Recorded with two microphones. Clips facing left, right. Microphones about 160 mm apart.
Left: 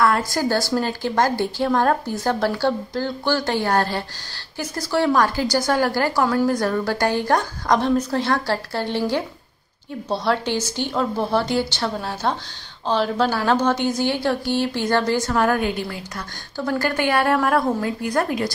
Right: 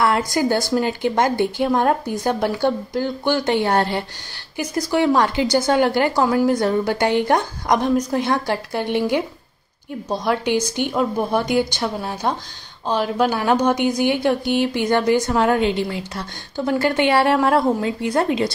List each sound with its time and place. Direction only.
0.3 s a woman's voice: 20° right (ahead or behind)